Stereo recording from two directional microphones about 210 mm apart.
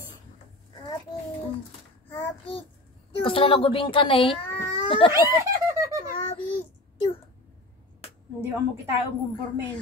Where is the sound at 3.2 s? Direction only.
25° left (ahead or behind).